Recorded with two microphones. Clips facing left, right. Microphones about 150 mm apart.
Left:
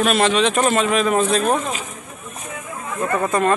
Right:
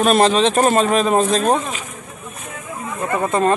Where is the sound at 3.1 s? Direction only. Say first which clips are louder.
Right 1 dB; 20° right (ahead or behind).